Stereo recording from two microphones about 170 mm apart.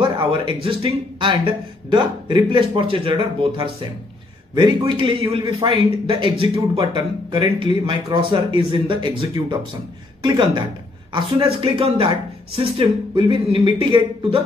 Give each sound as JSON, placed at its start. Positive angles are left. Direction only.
{"t": 0.0, "sound": "speech", "side_deg": -30}